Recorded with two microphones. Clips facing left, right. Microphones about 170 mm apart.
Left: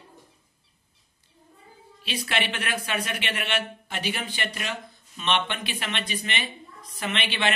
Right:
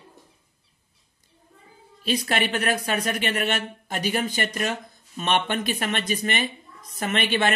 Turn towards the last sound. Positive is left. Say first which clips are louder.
# right 5 dB
turn(degrees=-45)  # may be behind; listen again after turning